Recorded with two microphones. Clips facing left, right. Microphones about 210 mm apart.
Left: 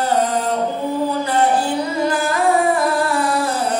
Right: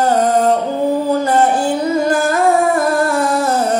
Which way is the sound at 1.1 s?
45° right (ahead or behind).